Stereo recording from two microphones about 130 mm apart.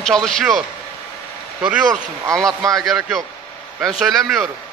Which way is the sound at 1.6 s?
5° right (ahead or behind).